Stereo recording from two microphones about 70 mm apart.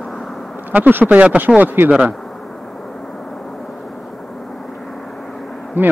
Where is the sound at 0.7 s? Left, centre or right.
Right.